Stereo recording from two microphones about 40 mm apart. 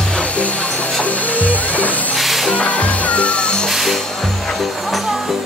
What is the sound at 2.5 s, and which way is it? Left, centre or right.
Music, left.